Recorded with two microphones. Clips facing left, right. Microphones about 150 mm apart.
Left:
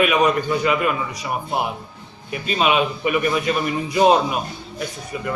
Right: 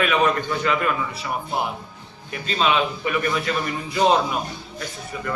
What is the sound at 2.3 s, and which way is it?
A man's voice, 15° left (ahead or behind).